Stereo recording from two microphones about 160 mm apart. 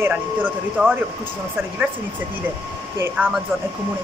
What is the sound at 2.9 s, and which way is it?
Speech, 10° right (ahead or behind).